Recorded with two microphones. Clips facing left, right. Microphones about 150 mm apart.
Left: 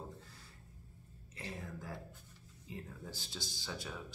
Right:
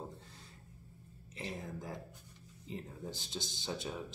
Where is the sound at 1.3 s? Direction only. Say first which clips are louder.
Right 3 dB; 15° right (ahead or behind).